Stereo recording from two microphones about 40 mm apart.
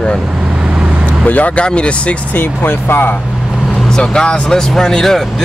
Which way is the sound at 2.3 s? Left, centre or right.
Left.